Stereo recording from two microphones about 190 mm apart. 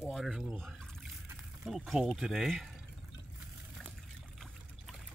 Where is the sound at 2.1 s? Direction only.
Centre (ahead or behind).